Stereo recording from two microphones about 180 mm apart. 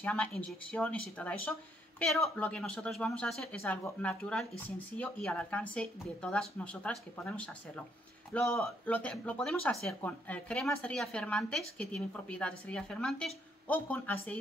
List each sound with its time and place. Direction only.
0.0 s speech: 5° left (ahead or behind)